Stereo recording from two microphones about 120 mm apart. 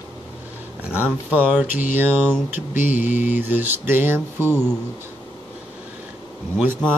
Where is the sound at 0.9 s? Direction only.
15° right (ahead or behind).